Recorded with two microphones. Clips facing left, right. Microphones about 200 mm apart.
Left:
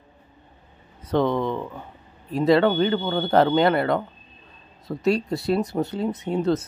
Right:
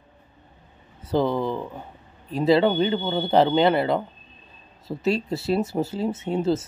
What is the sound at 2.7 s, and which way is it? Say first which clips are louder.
Speech: left 1 dB; 10° right (ahead or behind).